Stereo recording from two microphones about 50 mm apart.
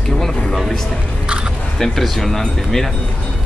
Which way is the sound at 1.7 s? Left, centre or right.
Centre.